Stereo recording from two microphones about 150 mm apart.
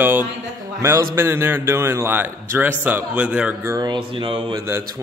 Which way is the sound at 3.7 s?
30° right (ahead or behind).